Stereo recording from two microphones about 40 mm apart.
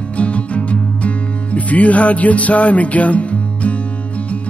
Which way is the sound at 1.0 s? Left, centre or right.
Left.